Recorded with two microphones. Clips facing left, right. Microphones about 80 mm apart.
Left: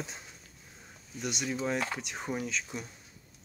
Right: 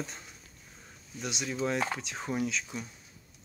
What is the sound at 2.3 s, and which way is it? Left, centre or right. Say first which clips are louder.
Speech: right 4 dB; centre.